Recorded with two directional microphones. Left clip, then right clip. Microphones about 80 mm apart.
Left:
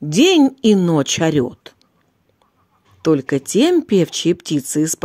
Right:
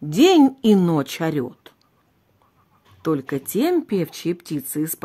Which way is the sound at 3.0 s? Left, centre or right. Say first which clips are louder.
Left 7 dB; left.